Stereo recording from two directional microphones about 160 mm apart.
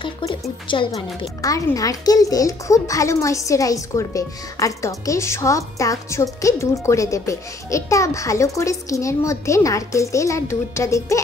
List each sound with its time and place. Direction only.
0.0 s speech: 30° left (ahead or behind)
1.4 s a child's voice: 20° left (ahead or behind)